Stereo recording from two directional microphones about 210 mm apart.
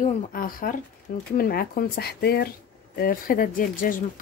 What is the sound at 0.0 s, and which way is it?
A woman's voice, 40° left (ahead or behind).